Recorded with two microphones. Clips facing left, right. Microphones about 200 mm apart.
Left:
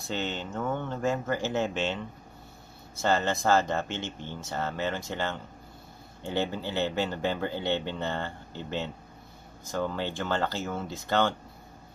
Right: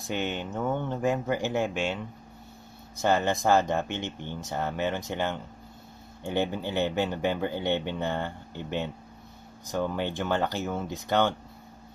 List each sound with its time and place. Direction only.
0.0 s speech: 15° right (ahead or behind)